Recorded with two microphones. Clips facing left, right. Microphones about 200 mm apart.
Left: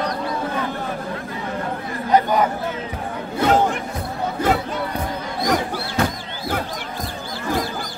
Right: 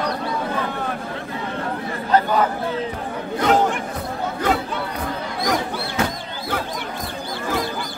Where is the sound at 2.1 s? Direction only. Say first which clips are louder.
Left 1 dB; 15° left (ahead or behind).